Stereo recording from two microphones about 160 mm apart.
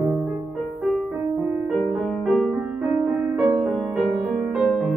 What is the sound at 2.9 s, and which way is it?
Music, 15° right (ahead or behind).